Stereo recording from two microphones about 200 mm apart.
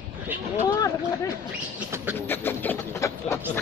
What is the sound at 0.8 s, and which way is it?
Speech, 20° left (ahead or behind).